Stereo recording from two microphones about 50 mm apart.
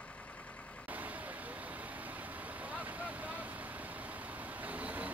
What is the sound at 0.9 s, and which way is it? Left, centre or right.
Vehicle, right.